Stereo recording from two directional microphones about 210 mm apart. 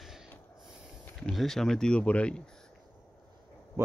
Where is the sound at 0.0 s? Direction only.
Centre (ahead or behind).